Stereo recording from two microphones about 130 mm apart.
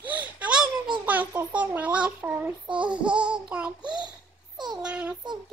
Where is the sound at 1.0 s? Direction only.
10° right (ahead or behind).